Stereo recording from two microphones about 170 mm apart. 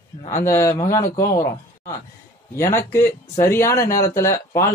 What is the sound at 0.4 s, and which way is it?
Speech, 15° left (ahead or behind).